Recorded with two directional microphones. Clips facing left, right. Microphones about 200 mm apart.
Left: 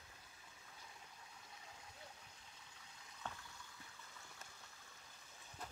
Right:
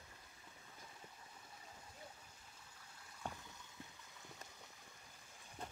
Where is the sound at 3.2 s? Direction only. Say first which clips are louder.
Right 3 dB; 15° right (ahead or behind).